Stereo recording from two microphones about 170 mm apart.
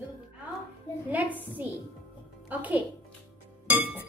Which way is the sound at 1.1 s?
10° right (ahead or behind).